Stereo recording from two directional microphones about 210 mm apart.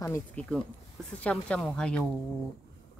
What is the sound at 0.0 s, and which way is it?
Speech, 10° left (ahead or behind).